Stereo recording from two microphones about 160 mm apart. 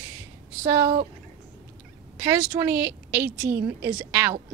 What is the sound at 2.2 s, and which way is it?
Speech, 15° right (ahead or behind).